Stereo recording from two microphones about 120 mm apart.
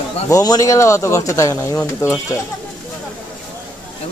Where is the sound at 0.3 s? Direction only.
30° left (ahead or behind).